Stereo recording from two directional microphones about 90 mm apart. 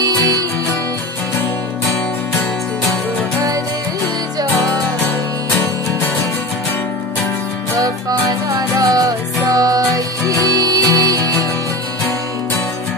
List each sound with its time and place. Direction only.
0.0 s music: 40° right (ahead or behind)
8.3 s music: 40° right (ahead or behind)